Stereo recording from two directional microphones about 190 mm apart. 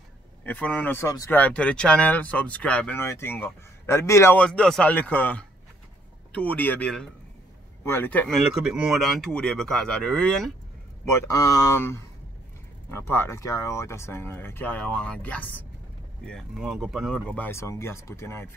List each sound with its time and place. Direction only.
0.4 s speech: 10° left (ahead or behind)
11.1 s speech: 15° left (ahead or behind)